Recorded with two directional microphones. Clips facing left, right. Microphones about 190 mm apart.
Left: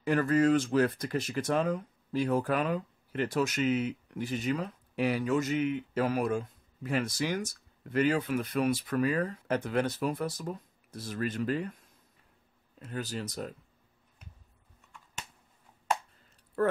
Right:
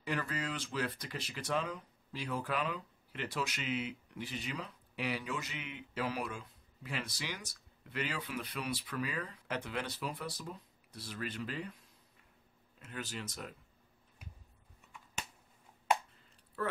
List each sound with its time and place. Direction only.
0.0 s speech: 45° left (ahead or behind)
12.7 s speech: 35° left (ahead or behind)
16.6 s speech: 50° left (ahead or behind)